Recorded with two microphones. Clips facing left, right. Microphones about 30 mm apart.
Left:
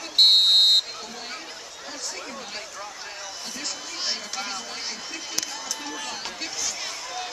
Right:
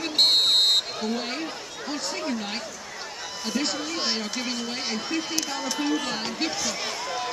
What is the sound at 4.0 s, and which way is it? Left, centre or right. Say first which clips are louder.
Speech: right 3 dB; centre.